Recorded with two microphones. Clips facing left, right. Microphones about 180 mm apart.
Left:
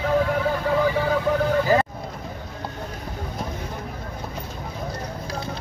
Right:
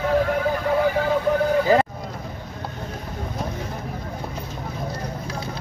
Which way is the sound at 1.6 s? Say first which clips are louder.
Right 2 dB; 20° right (ahead or behind).